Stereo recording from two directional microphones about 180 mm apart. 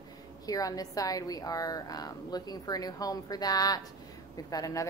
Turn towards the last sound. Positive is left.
turn(degrees=20)  # may be behind; listen again after turning